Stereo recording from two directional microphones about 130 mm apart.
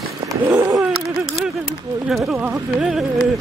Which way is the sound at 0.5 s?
25° right (ahead or behind).